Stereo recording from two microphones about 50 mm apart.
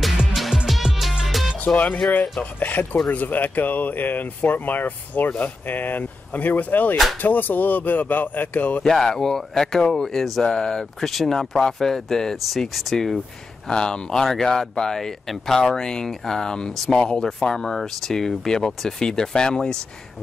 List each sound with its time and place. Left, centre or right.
0.3 s music: centre
2.6 s speech: left
8.8 s speech: centre
10.1 s speech: centre
13.7 s speech: centre
14.2 s speech: centre